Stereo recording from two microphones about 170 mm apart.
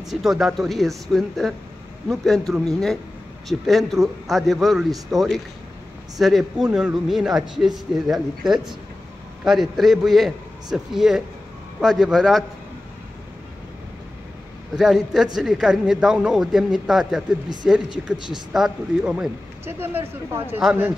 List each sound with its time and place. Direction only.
0.1 s a man's voice: centre (ahead or behind)
6.1 s a man's voice: centre (ahead or behind)
14.8 s a man's voice: centre (ahead or behind)
19.6 s speech: 15° right (ahead or behind)